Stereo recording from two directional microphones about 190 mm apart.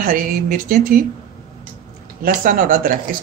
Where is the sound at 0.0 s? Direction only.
50° right (ahead or behind).